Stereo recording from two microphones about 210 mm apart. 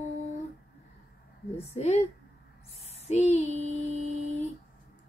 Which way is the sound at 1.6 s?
30° left (ahead or behind).